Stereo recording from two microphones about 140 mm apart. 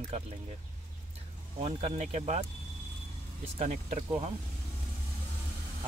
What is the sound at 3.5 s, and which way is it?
Speech, 55° right (ahead or behind).